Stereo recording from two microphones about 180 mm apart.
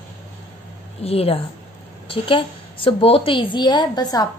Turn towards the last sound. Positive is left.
turn(degrees=20)  # may be behind; listen again after turning